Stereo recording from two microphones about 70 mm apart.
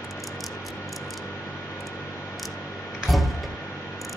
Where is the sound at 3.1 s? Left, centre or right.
Centre.